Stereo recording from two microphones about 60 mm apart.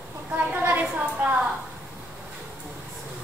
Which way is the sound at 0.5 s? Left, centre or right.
Right.